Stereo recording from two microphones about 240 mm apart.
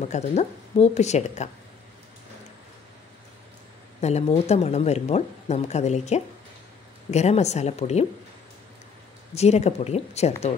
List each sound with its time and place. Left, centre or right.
0.1 s speech: left
4.0 s speech: left
9.3 s speech: left